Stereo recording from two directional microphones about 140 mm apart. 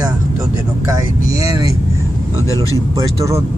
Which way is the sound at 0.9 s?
25° right (ahead or behind).